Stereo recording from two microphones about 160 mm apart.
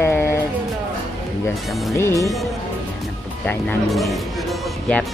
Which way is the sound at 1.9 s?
20° left (ahead or behind).